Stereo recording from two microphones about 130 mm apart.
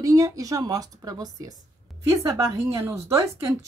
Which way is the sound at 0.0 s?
25° right (ahead or behind).